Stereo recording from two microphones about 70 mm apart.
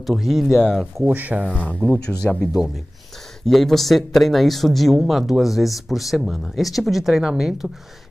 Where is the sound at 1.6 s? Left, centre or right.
Centre.